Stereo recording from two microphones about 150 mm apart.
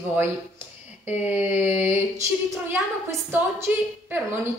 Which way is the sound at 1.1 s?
10° right (ahead or behind).